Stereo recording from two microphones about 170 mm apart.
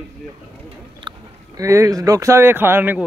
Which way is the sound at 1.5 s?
20° right (ahead or behind).